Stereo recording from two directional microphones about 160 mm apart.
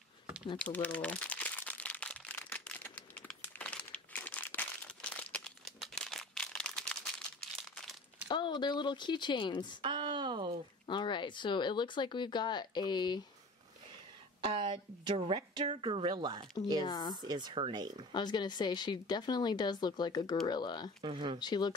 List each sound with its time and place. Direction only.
0.7 s crumpling: 10° left (ahead or behind)
8.3 s speech: 30° left (ahead or behind)
9.8 s a sound: 30° right (ahead or behind)
10.9 s speech: 30° left (ahead or behind)
14.4 s a woman's voice: 30° right (ahead or behind)
16.8 s speech: 25° left (ahead or behind)
17.2 s speech: 25° right (ahead or behind)
18.1 s speech: 25° left (ahead or behind)
21.0 s a woman's voice: 35° right (ahead or behind)
21.4 s speech: 25° left (ahead or behind)